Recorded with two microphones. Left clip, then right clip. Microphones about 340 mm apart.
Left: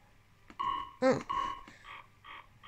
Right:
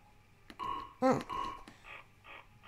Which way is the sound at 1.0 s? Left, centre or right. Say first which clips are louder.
Left 1 dB; centre.